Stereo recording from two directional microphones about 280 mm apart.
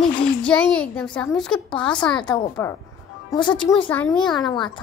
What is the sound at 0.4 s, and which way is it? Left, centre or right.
A woman's voice, centre.